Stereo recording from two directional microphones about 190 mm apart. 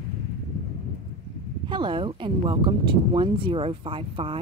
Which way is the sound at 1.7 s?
25° right (ahead or behind).